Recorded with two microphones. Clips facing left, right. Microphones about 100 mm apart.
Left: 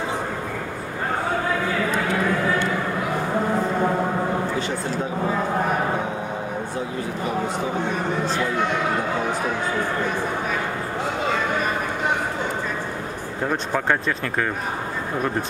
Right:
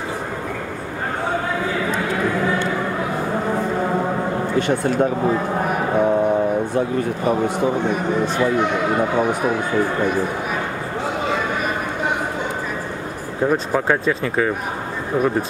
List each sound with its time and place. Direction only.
4.6 s speech: 55° right (ahead or behind)
13.5 s speech: 5° right (ahead or behind)